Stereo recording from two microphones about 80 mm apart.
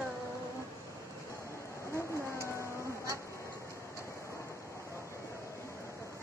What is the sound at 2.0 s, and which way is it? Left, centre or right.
Rain, left.